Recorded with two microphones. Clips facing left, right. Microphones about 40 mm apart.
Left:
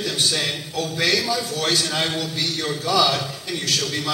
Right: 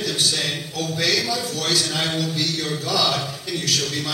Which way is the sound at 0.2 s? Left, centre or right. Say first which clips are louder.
Left 2 dB; left.